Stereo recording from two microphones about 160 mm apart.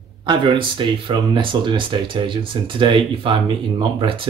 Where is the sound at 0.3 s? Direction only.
30° right (ahead or behind).